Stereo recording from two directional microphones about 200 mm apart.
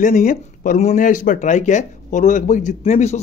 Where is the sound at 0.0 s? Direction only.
40° left (ahead or behind).